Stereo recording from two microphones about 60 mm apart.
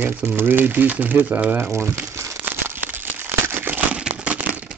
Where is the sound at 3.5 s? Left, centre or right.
Right.